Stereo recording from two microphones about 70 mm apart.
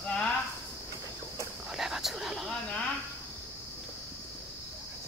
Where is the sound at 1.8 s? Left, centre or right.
Centre.